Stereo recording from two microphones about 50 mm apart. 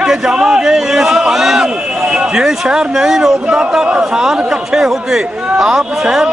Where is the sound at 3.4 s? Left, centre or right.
Right.